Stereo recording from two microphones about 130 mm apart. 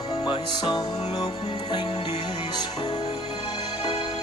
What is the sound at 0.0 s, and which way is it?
Music, 35° left (ahead or behind).